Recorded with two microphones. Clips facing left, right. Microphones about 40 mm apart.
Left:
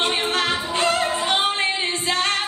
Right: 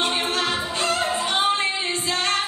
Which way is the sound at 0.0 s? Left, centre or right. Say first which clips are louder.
Left 2 dB; left.